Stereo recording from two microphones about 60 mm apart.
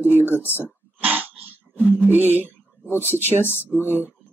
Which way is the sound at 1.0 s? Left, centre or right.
Right.